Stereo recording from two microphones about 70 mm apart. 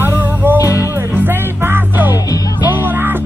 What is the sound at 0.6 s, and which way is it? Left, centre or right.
Music, left.